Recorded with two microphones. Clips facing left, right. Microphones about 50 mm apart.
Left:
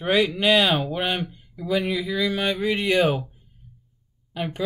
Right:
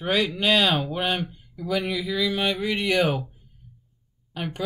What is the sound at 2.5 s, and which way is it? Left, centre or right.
Speech, centre.